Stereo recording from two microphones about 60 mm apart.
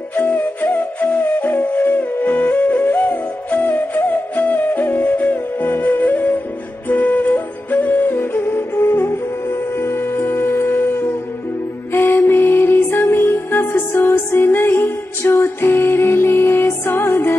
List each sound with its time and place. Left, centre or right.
0.1 s music: left
6.9 s flute: left
8.2 s music: left